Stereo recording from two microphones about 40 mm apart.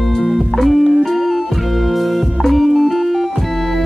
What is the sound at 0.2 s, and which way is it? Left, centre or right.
Music, centre.